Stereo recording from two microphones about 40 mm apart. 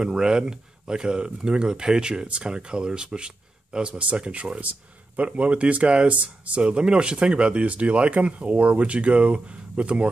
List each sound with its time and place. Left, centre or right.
0.0 s speech: centre; by 6.6 s right
6.6 s speech: right